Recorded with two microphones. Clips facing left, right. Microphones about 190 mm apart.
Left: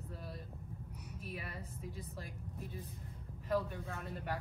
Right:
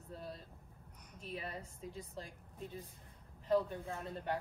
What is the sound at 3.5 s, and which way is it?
Speech, 30° right (ahead or behind).